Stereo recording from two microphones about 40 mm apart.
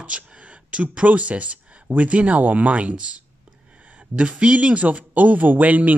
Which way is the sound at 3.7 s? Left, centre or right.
Right.